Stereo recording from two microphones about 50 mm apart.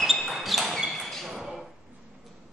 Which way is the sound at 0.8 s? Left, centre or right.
Centre.